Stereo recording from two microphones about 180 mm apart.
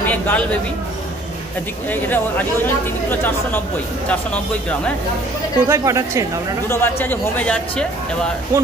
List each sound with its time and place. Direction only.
0.0 s a sound: 10° left (ahead or behind)
1.9 s speech: 10° left (ahead or behind)
5.7 s speech: 15° right (ahead or behind)
6.7 s speech: 10° left (ahead or behind)